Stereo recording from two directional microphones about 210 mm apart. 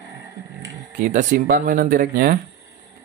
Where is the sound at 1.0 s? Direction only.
40° right (ahead or behind).